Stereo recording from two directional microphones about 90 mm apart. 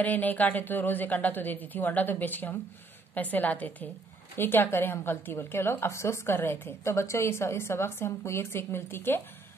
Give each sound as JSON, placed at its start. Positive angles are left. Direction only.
{"t": 0.0, "sound": "a woman's voice", "side_deg": 20}